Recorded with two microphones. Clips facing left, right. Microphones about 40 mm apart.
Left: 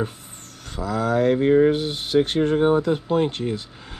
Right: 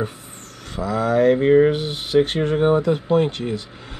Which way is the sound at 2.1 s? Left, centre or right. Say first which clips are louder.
Right 1 dB; right.